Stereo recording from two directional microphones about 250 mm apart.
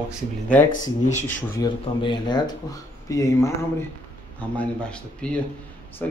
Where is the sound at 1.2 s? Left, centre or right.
Centre.